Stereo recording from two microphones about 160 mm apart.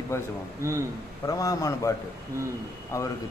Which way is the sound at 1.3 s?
20° left (ahead or behind).